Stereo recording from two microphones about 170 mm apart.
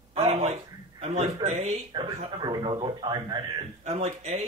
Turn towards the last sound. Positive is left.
turn(degrees=-35)  # may be behind; listen again after turning